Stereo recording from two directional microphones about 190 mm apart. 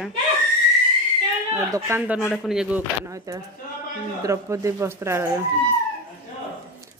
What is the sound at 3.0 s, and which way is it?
Speech, 15° right (ahead or behind).